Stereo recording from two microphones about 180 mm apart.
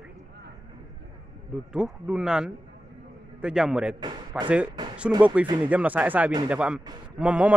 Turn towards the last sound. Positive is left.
turn(degrees=-5)  # may be behind; listen again after turning